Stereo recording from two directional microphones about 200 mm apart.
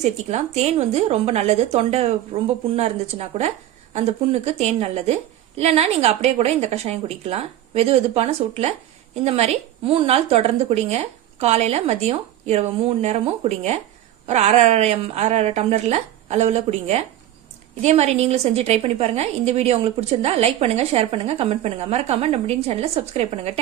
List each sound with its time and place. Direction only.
0.0 s a woman's voice: 35° right (ahead or behind)